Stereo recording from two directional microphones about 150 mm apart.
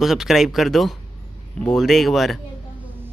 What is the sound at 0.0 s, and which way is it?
Speech, centre (ahead or behind).